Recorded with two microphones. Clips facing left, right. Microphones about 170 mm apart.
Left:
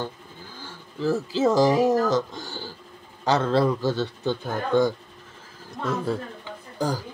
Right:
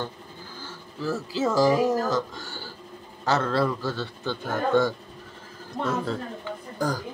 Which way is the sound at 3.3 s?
15° left (ahead or behind).